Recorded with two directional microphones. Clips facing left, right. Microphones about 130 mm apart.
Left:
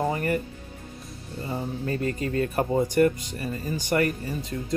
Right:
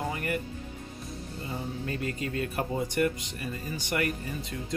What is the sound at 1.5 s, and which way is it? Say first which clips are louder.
Speech: left 6 dB; 40° left (ahead or behind).